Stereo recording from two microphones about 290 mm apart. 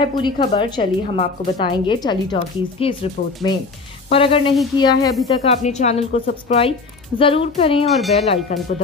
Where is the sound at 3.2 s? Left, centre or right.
Left.